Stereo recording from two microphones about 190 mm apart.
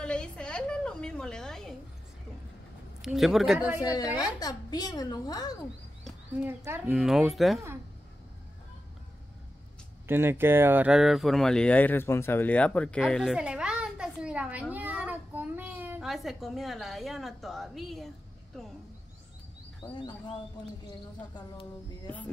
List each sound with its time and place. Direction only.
0.0 s a sound: 5° left (ahead or behind)
3.0 s speech: centre (ahead or behind)
3.8 s a woman's voice: 20° left (ahead or behind)
6.4 s speech: 10° right (ahead or behind)
10.0 s speech: 10° right (ahead or behind)
19.9 s a woman's voice: 25° left (ahead or behind)
22.0 s a sound: 5° left (ahead or behind)